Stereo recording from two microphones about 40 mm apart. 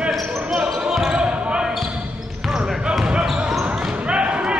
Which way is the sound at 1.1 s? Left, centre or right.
Right.